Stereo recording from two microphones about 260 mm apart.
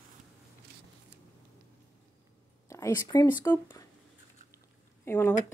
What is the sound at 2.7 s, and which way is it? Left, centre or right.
Speech, centre.